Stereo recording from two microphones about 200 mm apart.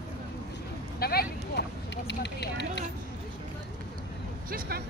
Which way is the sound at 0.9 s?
50° left (ahead or behind).